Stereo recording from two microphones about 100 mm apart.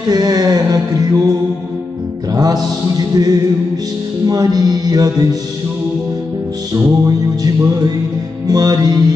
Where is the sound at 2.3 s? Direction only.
40° right (ahead or behind).